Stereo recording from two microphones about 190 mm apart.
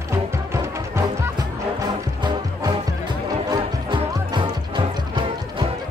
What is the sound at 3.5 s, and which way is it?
Music, 25° right (ahead or behind).